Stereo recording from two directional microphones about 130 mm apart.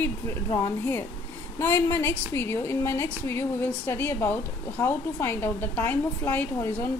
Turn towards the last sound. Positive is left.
turn(degrees=15)  # may be behind; listen again after turning